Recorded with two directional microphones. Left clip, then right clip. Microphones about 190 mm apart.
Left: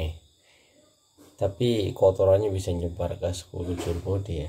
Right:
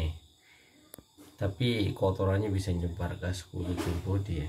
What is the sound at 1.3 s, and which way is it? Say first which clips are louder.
Speech: left 7 dB; 20° left (ahead or behind).